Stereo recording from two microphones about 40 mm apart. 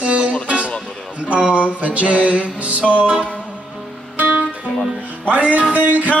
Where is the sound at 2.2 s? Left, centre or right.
Right.